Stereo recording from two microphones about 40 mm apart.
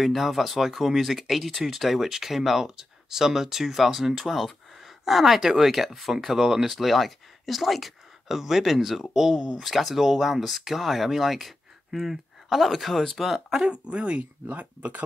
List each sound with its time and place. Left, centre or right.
0.0 s speech: centre
13.7 s speech: right